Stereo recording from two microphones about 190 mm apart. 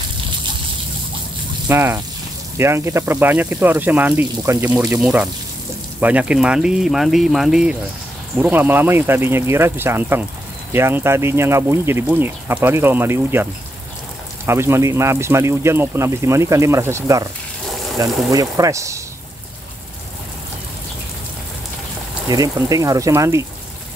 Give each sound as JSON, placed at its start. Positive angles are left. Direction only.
{"t": 1.7, "sound": "speech", "side_deg": -10}
{"t": 22.3, "sound": "speech", "side_deg": -20}